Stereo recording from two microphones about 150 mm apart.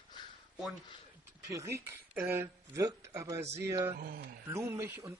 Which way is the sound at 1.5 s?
20° right (ahead or behind).